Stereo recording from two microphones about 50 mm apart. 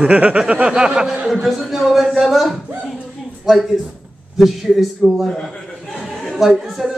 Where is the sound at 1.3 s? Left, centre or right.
Centre.